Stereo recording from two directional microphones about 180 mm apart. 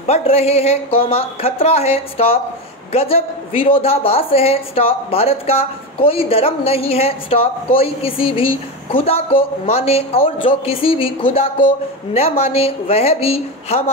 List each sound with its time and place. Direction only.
0.0 s a woman's voice: 35° left (ahead or behind)